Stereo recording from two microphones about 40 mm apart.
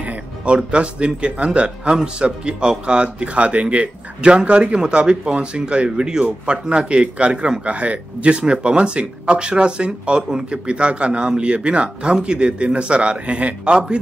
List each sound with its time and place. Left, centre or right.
0.0 s music: right
0.6 s speech: right